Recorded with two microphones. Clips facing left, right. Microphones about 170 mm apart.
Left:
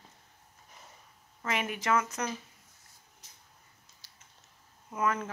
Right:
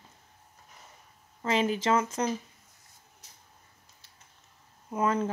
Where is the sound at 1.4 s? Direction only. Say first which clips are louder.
Right 6 dB; 30° right (ahead or behind).